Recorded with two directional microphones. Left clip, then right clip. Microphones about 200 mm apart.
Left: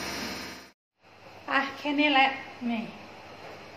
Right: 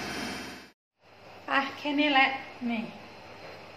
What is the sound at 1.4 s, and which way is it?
A woman's voice, centre (ahead or behind).